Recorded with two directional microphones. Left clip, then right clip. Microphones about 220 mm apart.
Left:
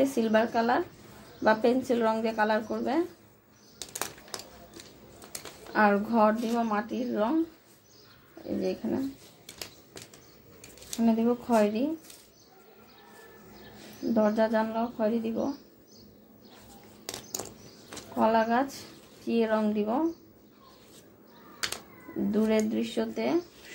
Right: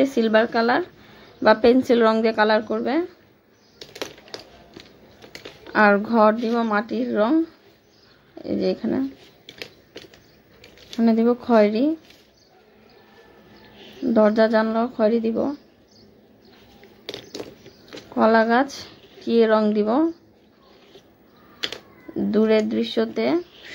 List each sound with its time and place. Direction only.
0.0 s speech: 35° right (ahead or behind)
5.7 s speech: 35° right (ahead or behind)
8.5 s speech: 35° right (ahead or behind)
11.0 s speech: 40° right (ahead or behind)
14.1 s speech: 40° right (ahead or behind)
18.1 s speech: 40° right (ahead or behind)
22.3 s speech: 40° right (ahead or behind)